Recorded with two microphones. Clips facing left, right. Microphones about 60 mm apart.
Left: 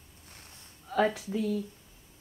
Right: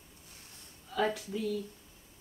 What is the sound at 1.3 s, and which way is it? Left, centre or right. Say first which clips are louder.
Speech: left 4 dB; left.